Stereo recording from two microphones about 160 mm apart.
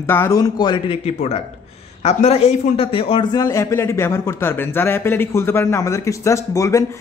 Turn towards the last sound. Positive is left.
turn(degrees=20)  # may be behind; listen again after turning